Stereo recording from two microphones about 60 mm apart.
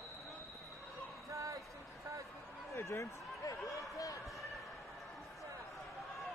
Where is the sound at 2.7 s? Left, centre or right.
Left.